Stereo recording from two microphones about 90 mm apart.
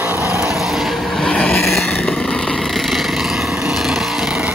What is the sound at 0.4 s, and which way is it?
Vehicle, centre (ahead or behind).